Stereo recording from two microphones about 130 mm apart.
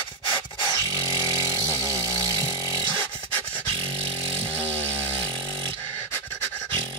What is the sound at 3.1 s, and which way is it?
Dog, 15° left (ahead or behind).